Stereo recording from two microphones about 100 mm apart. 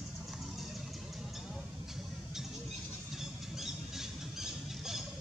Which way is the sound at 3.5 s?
5° right (ahead or behind).